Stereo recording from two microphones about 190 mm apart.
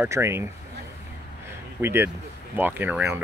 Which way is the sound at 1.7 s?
10° right (ahead or behind).